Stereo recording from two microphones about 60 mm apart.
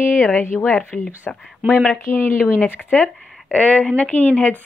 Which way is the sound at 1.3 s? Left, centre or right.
Centre.